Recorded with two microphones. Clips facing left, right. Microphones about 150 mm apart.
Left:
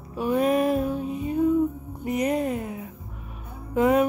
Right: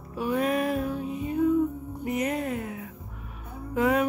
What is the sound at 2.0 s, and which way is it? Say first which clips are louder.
Music: left 4 dB; 20° left (ahead or behind).